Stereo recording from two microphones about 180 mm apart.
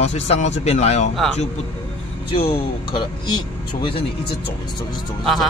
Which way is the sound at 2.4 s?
25° left (ahead or behind).